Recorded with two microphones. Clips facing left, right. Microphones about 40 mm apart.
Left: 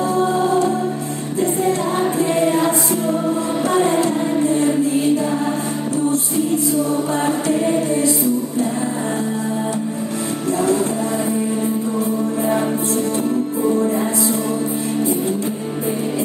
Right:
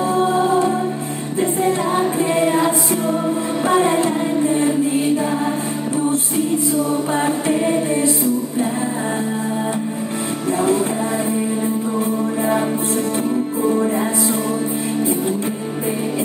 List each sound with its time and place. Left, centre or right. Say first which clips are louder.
0.0 s music: right 1 dB; right
7.1 s music: even; right